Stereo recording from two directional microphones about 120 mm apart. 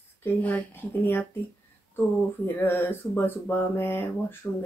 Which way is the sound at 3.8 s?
20° left (ahead or behind).